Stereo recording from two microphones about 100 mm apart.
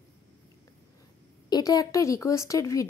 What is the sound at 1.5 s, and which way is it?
Speech, 35° left (ahead or behind).